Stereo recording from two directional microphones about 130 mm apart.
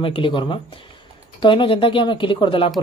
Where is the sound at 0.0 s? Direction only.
40° left (ahead or behind).